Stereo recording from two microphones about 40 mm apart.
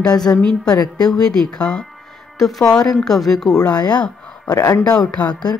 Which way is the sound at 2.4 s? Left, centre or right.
Centre.